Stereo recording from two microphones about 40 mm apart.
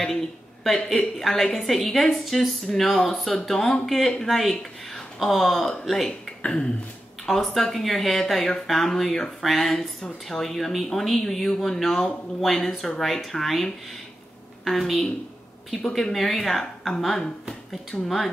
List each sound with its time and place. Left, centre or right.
0.8 s a woman's voice: centre
6.4 s a sound: left
7.2 s a woman's voice: centre